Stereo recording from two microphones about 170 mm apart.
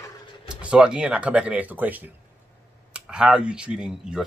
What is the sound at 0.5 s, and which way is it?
Speech, 5° right (ahead or behind).